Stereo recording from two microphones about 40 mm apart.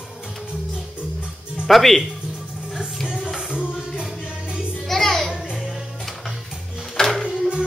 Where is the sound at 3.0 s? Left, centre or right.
Centre.